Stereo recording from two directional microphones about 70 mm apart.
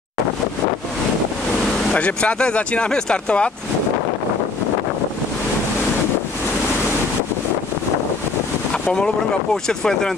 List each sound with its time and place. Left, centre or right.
1.9 s speech: centre
8.9 s speech: centre